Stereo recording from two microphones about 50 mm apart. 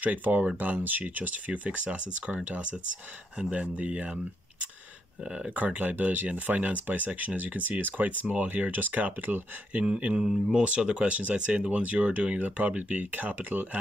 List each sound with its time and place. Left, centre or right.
0.0 s speech: right
5.6 s speech: right
9.8 s speech: right
10.2 s speech: centre
10.6 s speech: right